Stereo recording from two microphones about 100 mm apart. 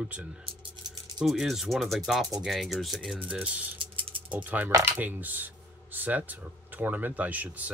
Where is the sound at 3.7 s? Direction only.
60° right (ahead or behind).